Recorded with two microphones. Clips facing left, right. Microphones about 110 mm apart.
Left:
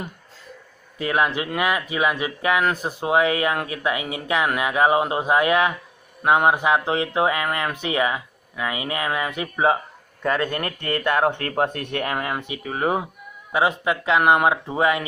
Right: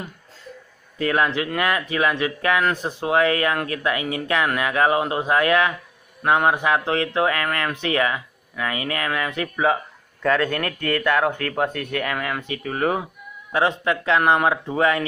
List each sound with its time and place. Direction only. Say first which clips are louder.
0.9 s speech: right 1 dB; 15° left (ahead or behind)